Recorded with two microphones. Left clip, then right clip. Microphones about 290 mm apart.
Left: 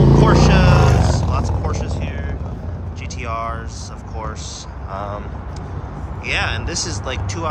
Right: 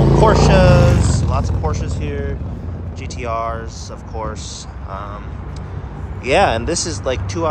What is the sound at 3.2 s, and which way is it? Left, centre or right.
Speech, centre.